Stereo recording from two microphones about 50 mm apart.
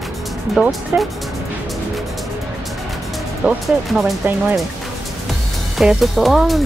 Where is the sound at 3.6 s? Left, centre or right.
Centre.